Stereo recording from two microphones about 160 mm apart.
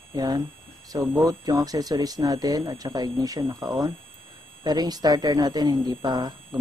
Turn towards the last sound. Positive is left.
turn(degrees=-25)  # may be behind; listen again after turning